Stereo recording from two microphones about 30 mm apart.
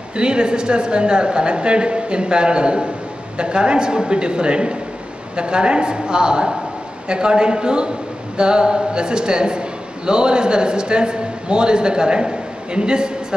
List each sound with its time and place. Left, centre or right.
0.1 s a woman's voice: right